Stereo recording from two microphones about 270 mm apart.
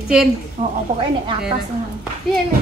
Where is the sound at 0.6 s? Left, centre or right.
Right.